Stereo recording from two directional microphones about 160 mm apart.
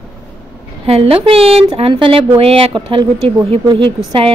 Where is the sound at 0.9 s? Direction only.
35° right (ahead or behind).